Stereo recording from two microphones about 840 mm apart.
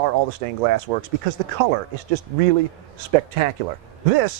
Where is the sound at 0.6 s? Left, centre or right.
Right.